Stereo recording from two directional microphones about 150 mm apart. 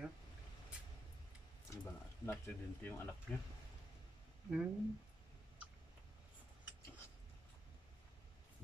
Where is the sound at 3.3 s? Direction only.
Centre (ahead or behind).